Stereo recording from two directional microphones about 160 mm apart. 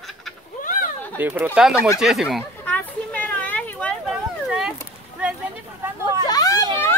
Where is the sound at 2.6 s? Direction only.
10° left (ahead or behind).